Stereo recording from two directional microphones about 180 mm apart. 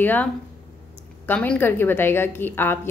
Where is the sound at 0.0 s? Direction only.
10° left (ahead or behind).